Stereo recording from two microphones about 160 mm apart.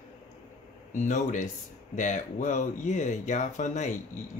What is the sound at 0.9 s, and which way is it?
Speech, 50° left (ahead or behind).